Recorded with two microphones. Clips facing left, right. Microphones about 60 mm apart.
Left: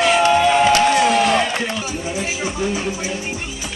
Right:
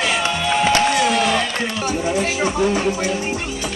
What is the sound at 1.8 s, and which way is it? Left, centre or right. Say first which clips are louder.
Speech: right 4 dB; right.